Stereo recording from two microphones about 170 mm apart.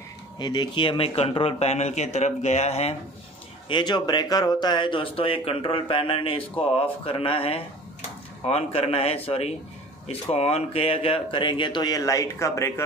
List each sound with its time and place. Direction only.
0.4 s a man's voice: 25° left (ahead or behind)
3.6 s a man's voice: 25° left (ahead or behind)